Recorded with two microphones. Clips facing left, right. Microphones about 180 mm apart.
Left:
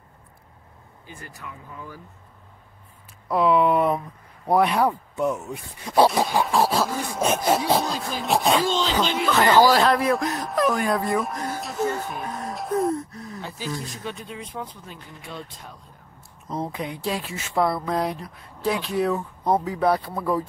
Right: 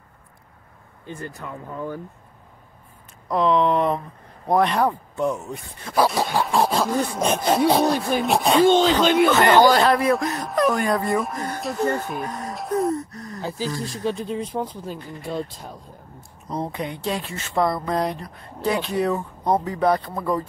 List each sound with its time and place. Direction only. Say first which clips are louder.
1.4 s speech: right 7 dB; 50° right (ahead or behind)
3.3 s speech: even; 10° left (ahead or behind)
8.6 s speech: right 8 dB; 55° right (ahead or behind)
9.3 s speech: left 2 dB; centre (ahead or behind)
13.4 s speech: right 9 dB; 35° right (ahead or behind)
13.7 s speech: right 3 dB; centre (ahead or behind)
14.0 s speech: right 9 dB; 35° right (ahead or behind)
15.0 s speech: right 9 dB; centre (ahead or behind)